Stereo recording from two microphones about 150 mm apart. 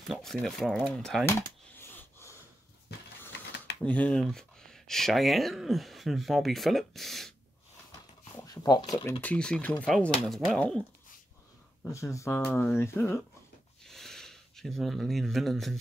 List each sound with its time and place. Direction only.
0.1 s speech: centre (ahead or behind)
1.8 s snort: 15° left (ahead or behind)
3.8 s speech: 10° left (ahead or behind)
8.3 s a sound: 25° left (ahead or behind)
9.2 s speech: 5° left (ahead or behind)
11.9 s speech: 20° left (ahead or behind)
13.8 s a sound: 5° left (ahead or behind)